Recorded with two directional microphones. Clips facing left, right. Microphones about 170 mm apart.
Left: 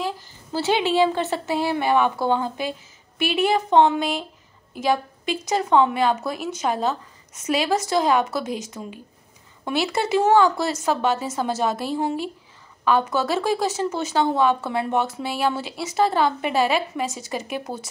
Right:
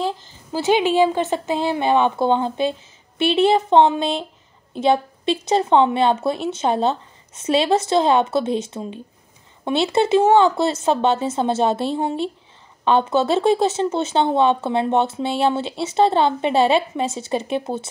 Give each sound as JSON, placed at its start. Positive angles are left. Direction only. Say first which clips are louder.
{"t": 0.5, "sound": "speech", "louder": "right 4 dB", "side_deg": -15}